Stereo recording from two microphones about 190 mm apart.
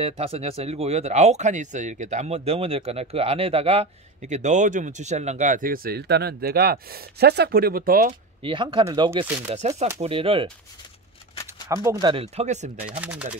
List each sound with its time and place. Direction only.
0.0 s speech: 30° right (ahead or behind); by 8.1 s 50° right (ahead or behind)
8.4 s speech: 25° right (ahead or behind)
11.7 s speech: 15° right (ahead or behind); by 12.7 s 35° right (ahead or behind)
13.0 s speech: 5° right (ahead or behind)